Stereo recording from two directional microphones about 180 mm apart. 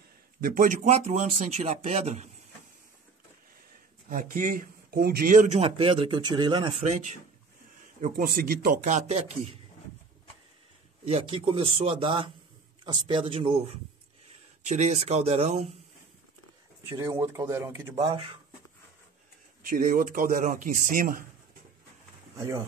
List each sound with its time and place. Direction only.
0.4 s speech: 50° right (ahead or behind)
4.1 s speech: 45° right (ahead or behind)
5.6 s speech: 30° right (ahead or behind)
8.0 s speech: 55° right (ahead or behind); by 9.6 s 35° right (ahead or behind)
11.1 s speech: 35° right (ahead or behind)
14.6 s speech: 40° right (ahead or behind)
16.9 s speech: 15° right (ahead or behind)
17.9 s speech: 30° right (ahead or behind)
19.7 s speech: 55° right (ahead or behind)